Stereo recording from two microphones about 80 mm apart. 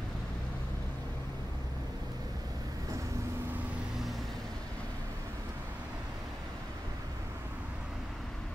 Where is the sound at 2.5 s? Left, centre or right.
Right.